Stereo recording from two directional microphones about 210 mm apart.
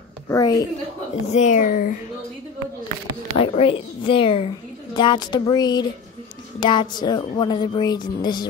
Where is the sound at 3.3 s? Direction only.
25° left (ahead or behind).